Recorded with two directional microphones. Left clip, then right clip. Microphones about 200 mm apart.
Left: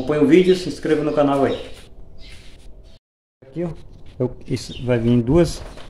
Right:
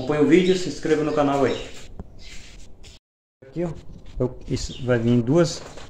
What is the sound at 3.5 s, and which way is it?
Speech, centre (ahead or behind).